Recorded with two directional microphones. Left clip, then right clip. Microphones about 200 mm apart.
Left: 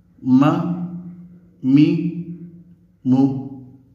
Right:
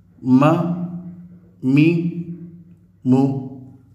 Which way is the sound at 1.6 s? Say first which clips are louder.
Left 1 dB; 10° right (ahead or behind).